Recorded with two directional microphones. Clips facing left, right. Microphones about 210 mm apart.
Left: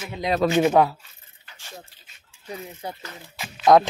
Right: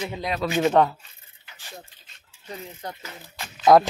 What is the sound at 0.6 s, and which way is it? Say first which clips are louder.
Speech: left 1 dB; 5° left (ahead or behind).